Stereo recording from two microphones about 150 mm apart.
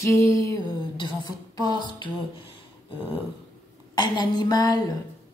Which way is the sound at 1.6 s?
25° left (ahead or behind).